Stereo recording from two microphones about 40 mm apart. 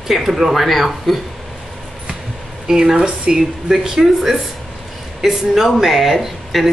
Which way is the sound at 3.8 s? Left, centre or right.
Centre.